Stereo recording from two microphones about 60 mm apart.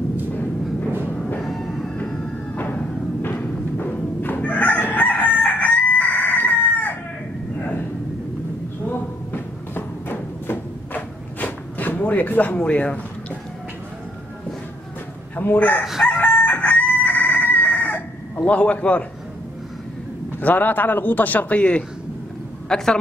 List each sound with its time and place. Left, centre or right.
0.3 s a sound: left
1.4 s music: centre
2.5 s music: left
3.3 s chicken: left
7.5 s a sound: left
8.8 s a sound: left
15.3 s speech: left
15.8 s crowing: centre
16.1 s chicken: left
20.2 s a man's voice: left
22.7 s a woman's voice: centre